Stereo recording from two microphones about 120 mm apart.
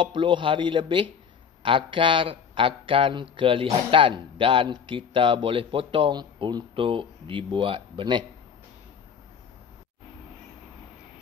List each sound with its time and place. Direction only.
0.0 s a man's voice: 45° right (ahead or behind)